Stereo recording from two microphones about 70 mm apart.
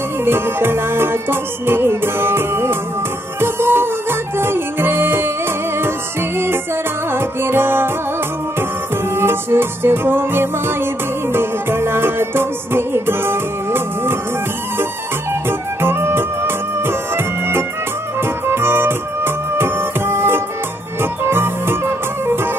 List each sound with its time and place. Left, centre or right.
0.2 s music: right
9.1 s music: right
15.8 s music: right